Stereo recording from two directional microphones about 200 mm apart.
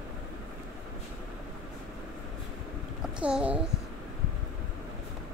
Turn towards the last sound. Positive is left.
turn(degrees=-5)  # may be behind; listen again after turning